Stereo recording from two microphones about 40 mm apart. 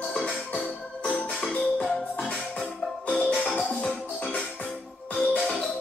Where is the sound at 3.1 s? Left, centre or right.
Left.